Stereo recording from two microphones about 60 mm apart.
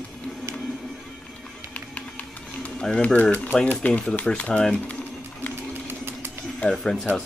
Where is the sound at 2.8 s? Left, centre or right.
Centre.